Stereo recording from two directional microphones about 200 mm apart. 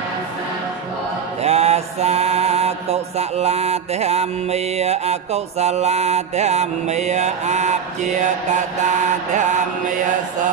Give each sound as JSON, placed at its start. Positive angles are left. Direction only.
{"t": 1.4, "sound": "mantra", "side_deg": -30}